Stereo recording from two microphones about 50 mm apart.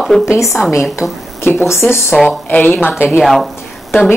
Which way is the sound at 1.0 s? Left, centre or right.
Left.